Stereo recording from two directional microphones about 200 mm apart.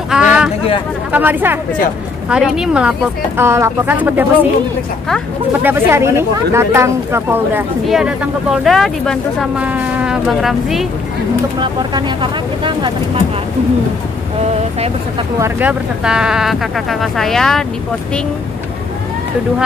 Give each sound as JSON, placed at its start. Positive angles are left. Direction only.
{"t": 0.1, "sound": "a sound", "side_deg": -5}
{"t": 1.1, "sound": "speech", "side_deg": -10}
{"t": 5.6, "sound": "speech", "side_deg": -10}
{"t": 11.6, "sound": "speech", "side_deg": -25}
{"t": 15.3, "sound": "speech", "side_deg": -10}